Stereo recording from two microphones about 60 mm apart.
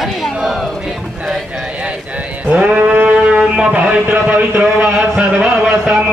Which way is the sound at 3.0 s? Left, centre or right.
Right.